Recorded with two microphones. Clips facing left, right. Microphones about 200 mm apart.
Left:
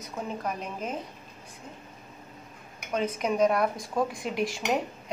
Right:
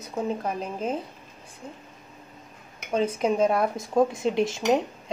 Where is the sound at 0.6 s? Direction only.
30° right (ahead or behind).